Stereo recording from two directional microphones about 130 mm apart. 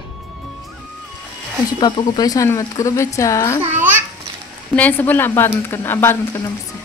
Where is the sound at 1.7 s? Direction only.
30° left (ahead or behind).